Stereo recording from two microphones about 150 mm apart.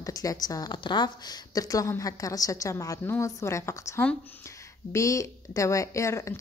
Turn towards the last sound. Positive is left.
turn(degrees=20)  # may be behind; listen again after turning